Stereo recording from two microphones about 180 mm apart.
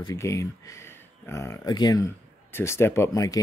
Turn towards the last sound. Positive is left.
turn(degrees=20)  # may be behind; listen again after turning